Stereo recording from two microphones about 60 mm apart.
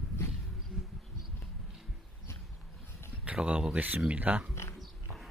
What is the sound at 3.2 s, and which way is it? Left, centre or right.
Speech, right.